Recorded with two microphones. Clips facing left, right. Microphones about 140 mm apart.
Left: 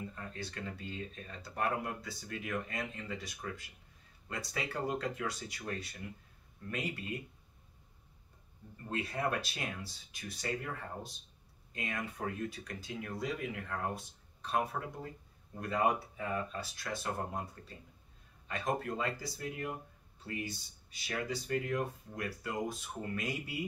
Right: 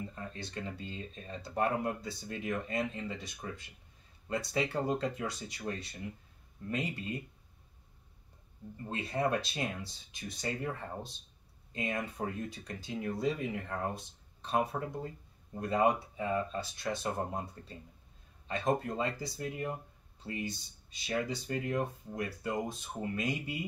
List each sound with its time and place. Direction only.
0.1 s speech: 25° right (ahead or behind)
8.9 s speech: 25° right (ahead or behind)